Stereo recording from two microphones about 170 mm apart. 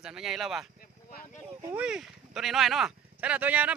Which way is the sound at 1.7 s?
5° right (ahead or behind).